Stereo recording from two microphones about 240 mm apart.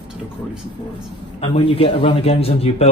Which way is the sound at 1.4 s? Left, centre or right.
Left.